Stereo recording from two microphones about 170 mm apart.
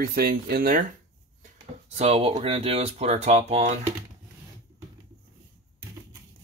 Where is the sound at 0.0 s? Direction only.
60° right (ahead or behind).